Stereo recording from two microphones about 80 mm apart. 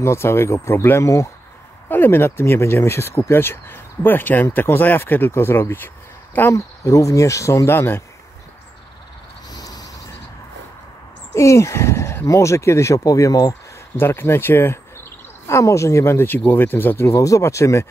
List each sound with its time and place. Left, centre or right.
0.0 s speech: left
1.9 s speech: left
6.5 s speech: left
9.5 s a sound: left
11.3 s speech: left
13.9 s speech: left
17.1 s speech: left